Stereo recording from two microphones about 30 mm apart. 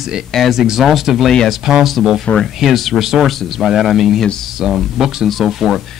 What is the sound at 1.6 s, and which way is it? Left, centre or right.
Speech, centre.